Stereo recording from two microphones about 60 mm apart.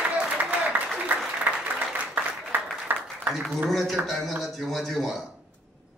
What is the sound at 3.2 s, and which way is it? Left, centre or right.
A man's voice, centre.